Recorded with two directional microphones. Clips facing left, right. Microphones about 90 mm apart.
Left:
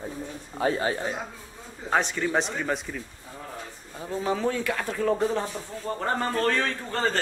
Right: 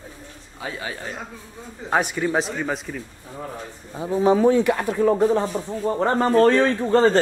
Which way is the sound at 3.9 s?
20° right (ahead or behind).